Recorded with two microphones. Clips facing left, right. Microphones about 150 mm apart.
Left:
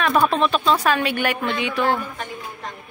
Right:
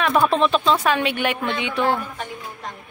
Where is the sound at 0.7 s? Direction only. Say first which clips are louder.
Even; 15° right (ahead or behind).